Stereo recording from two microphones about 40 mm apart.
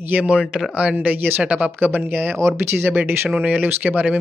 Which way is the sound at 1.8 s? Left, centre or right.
Right.